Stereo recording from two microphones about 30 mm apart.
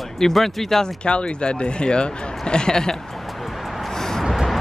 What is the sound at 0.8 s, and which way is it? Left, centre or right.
A man's voice, left.